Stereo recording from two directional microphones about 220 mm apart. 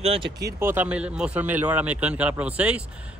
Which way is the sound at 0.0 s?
25° right (ahead or behind).